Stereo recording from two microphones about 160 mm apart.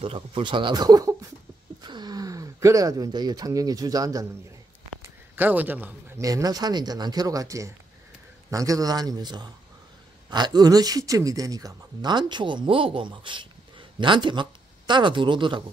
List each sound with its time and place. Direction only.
0.0 s speech: 35° right (ahead or behind)
5.3 s speech: 10° right (ahead or behind); by 15.6 s 30° right (ahead or behind)